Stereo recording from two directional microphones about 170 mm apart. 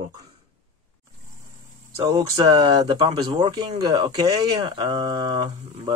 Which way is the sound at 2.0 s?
25° right (ahead or behind).